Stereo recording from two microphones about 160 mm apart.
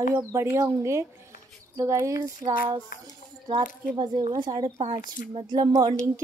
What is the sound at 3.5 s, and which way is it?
Speech, 30° right (ahead or behind).